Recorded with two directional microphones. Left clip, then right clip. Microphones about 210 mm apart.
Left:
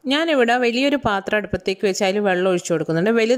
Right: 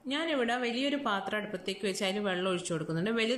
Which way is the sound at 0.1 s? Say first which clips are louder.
Left 14 dB; 45° left (ahead or behind).